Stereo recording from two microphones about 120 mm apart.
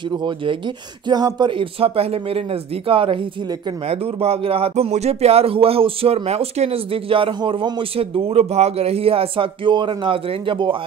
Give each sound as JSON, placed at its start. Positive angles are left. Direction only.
{"t": 0.1, "sound": "speech", "side_deg": -40}